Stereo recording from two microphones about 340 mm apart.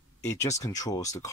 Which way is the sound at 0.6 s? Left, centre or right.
Centre.